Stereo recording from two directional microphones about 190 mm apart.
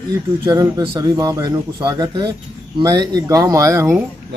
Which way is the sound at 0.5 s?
20° right (ahead or behind).